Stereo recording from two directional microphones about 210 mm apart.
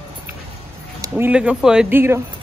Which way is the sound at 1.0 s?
10° right (ahead or behind).